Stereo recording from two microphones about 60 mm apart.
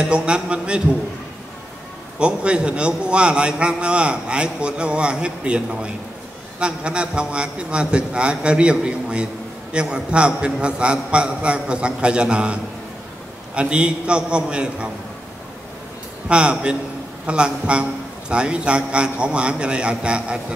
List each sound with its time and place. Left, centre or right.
0.0 s a man's voice: centre
2.1 s a man's voice: centre
13.6 s a man's voice: centre
16.3 s a man's voice: centre